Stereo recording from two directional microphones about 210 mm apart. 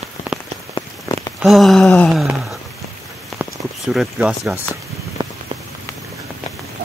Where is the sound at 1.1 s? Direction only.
15° left (ahead or behind).